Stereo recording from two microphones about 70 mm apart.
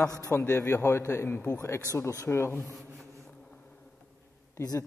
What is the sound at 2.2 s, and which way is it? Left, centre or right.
Speech, left.